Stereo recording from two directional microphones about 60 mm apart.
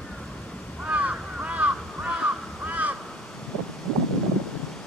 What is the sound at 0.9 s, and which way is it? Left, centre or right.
Crow, right.